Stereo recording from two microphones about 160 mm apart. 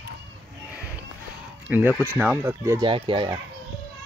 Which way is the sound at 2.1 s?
15° right (ahead or behind).